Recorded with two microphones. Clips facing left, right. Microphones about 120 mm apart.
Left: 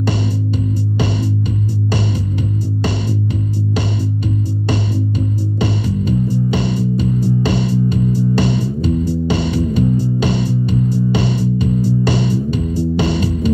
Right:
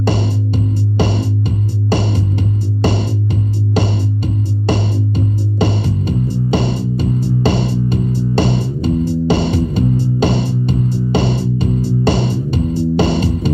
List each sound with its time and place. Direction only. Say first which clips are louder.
0.9 s music: right 4 dB; 30° right (ahead or behind)
5.6 s music: right 2 dB; 30° right (ahead or behind)